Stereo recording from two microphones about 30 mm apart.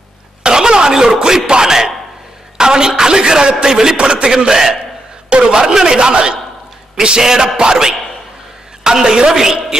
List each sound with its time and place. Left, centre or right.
0.4 s throat clearing: right
1.2 s a man's voice: right
3.9 s a man's voice: right
4.5 s a man's voice: centre
5.3 s a man's voice: right